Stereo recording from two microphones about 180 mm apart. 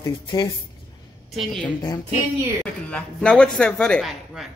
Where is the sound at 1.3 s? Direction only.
Centre (ahead or behind).